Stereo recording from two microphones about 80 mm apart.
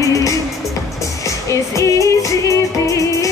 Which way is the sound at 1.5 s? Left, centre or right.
Left.